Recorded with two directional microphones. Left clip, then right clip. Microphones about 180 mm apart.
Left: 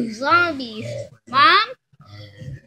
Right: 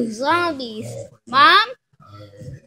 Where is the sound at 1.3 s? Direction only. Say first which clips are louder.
Right 2 dB; 25° right (ahead or behind).